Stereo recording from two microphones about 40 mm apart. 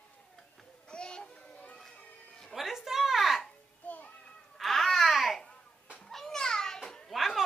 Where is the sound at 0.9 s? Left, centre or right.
Left.